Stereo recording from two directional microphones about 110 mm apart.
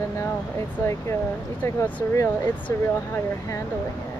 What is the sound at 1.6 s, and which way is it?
Speech, 15° left (ahead or behind).